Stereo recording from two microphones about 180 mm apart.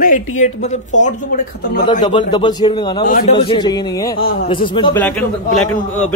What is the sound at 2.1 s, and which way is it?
Speech, 25° left (ahead or behind).